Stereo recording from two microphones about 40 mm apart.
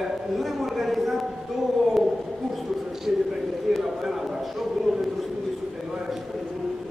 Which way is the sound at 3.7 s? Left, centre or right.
Centre.